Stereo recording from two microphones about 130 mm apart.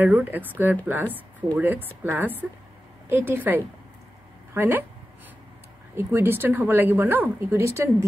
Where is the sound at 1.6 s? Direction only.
15° right (ahead or behind).